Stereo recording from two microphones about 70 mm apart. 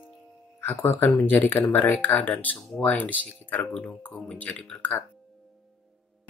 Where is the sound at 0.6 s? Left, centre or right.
Left.